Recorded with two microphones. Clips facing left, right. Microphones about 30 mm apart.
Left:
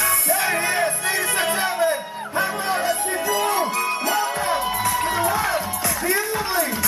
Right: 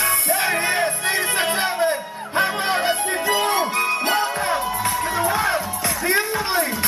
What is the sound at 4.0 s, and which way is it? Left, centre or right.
Music, right.